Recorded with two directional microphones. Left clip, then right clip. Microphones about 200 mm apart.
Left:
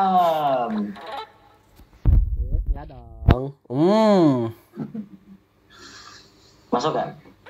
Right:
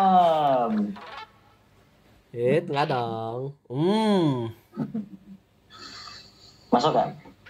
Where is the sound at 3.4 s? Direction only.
20° left (ahead or behind).